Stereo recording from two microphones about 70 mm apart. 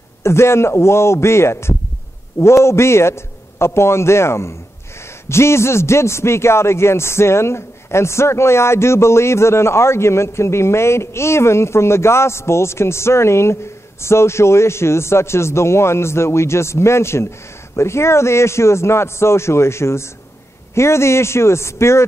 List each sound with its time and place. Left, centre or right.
0.2 s a man's voice: left